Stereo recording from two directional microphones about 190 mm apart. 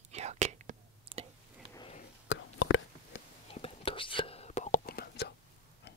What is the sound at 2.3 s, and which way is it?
Whispering, 85° left.